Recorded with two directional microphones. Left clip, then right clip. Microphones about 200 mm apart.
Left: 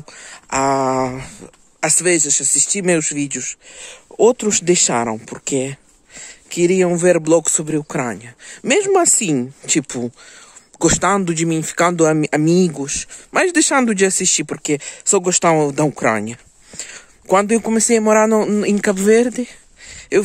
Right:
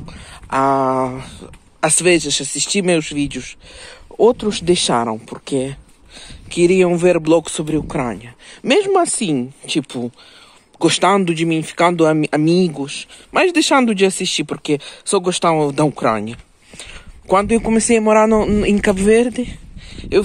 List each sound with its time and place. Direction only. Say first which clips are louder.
0.0 s speech: even; 30° left (ahead or behind)
6.5 s speech: right 2 dB; 20° left (ahead or behind)